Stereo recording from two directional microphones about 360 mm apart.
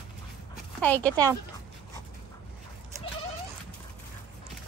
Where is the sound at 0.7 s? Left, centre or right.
Centre.